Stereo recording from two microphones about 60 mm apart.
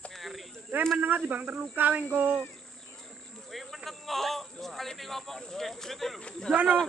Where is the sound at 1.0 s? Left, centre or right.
Right.